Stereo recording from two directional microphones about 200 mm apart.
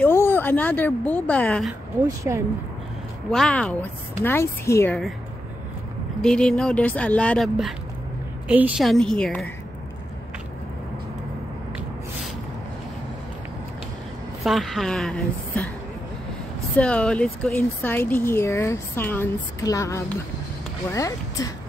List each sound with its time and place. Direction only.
0.0 s speech: 10° left (ahead or behind)
2.3 s speech: 15° right (ahead or behind)
3.3 s speech: centre (ahead or behind)
6.2 s speech: 5° left (ahead or behind)
14.4 s speech: centre (ahead or behind)
16.7 s speech: 5° left (ahead or behind)